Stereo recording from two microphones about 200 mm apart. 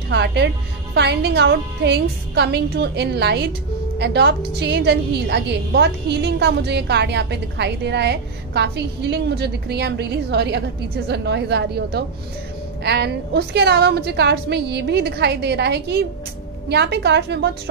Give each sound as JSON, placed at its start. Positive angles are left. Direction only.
{"t": 0.1, "sound": "a woman's voice", "side_deg": -55}